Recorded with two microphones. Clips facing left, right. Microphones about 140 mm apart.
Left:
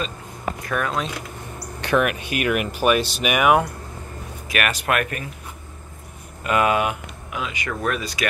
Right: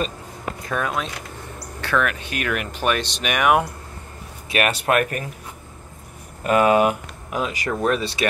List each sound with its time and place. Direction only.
0.7 s speech: 20° right (ahead or behind)
1.8 s speech: 15° left (ahead or behind)
4.5 s speech: 30° right (ahead or behind)
6.4 s speech: 35° right (ahead or behind)